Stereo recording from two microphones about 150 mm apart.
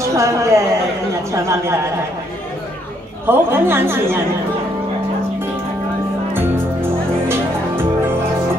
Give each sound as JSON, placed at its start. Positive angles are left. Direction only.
{"t": 0.0, "sound": "speech", "side_deg": -20}
{"t": 3.3, "sound": "a woman's voice", "side_deg": -15}
{"t": 6.3, "sound": "music", "side_deg": -15}